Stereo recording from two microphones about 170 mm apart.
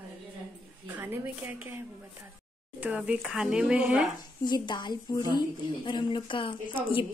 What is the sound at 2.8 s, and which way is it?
Speech, 10° right (ahead or behind).